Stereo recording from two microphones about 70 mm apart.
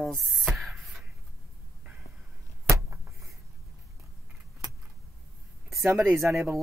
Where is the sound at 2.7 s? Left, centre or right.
Right.